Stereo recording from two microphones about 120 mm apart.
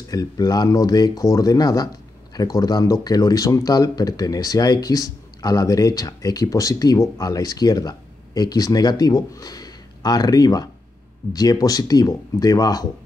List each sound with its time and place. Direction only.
0.1 s speech: 30° left (ahead or behind)